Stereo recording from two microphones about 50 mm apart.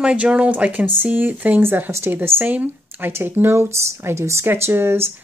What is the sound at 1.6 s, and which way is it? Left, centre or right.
Speech, right.